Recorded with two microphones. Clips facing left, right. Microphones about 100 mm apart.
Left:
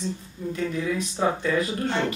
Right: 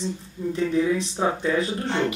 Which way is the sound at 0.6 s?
30° right (ahead or behind).